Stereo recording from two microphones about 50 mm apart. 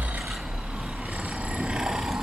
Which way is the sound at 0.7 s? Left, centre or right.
Centre.